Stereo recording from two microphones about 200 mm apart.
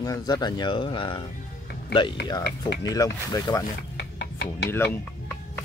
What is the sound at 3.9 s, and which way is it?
Music, 55° left (ahead or behind).